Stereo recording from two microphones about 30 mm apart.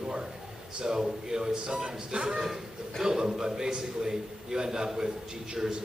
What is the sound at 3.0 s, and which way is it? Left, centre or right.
A man's voice, right.